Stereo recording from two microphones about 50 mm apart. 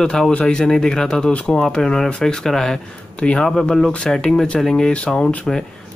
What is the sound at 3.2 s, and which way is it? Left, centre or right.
Speech, left.